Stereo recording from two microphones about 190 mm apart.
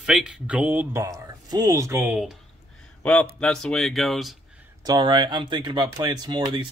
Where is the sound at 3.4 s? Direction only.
5° left (ahead or behind).